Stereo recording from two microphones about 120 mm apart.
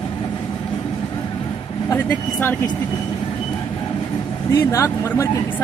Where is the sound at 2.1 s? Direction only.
15° left (ahead or behind).